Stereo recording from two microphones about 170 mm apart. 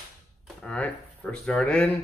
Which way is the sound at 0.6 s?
5° left (ahead or behind).